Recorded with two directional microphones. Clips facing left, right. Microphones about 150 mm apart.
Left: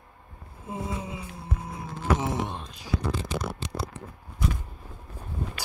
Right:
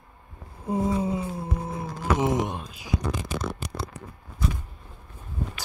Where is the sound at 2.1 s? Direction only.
15° right (ahead or behind).